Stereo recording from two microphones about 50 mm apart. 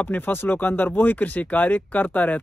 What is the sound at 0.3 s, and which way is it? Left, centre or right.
Speech, left.